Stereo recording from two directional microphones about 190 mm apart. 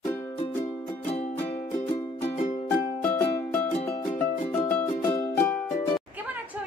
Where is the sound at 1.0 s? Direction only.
35° left (ahead or behind).